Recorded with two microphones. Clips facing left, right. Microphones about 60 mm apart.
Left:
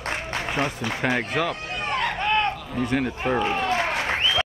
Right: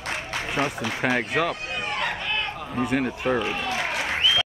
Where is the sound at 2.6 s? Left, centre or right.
Centre.